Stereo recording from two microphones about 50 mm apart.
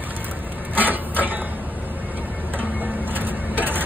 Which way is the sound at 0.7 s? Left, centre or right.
Right.